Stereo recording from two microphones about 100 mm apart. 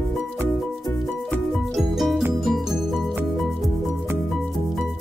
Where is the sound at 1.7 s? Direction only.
Centre (ahead or behind).